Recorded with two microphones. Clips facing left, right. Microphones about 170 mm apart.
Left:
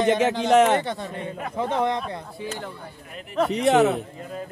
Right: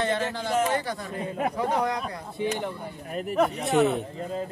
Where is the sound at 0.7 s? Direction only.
25° left (ahead or behind).